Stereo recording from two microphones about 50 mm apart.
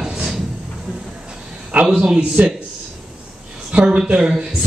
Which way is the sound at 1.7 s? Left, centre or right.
Right.